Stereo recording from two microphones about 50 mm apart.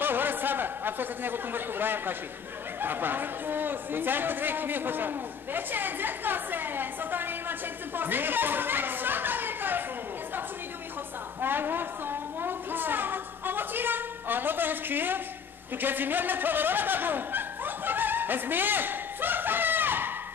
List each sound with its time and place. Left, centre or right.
0.0 s speech: right
11.4 s a woman's voice: right